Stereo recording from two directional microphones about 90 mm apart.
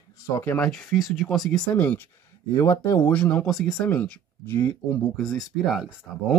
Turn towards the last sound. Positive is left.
turn(degrees=-5)  # may be behind; listen again after turning